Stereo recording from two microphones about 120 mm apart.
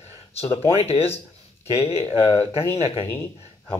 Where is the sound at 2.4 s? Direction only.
20° left (ahead or behind).